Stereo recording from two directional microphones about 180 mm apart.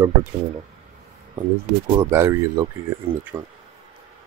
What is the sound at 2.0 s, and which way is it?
Speech, 15° right (ahead or behind).